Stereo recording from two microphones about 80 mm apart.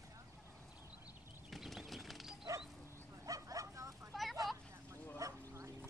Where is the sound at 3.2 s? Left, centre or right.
Right.